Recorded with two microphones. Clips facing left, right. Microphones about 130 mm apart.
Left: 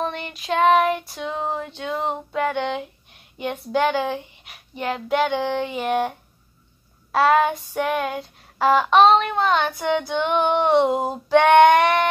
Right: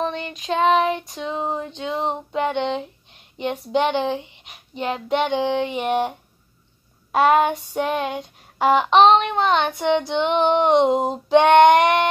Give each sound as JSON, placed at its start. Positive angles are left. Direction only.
{"t": 0.0, "sound": "child singing", "side_deg": -25}
{"t": 0.5, "sound": "female singing", "side_deg": -25}
{"t": 5.4, "sound": "child singing", "side_deg": -15}
{"t": 7.7, "sound": "female singing", "side_deg": -25}
{"t": 11.2, "sound": "child singing", "side_deg": -15}